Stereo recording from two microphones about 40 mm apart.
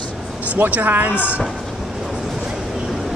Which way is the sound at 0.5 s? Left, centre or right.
Right.